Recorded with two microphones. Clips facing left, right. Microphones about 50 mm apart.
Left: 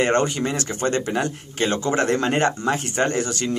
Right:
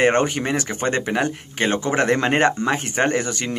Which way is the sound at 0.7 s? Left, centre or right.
Right.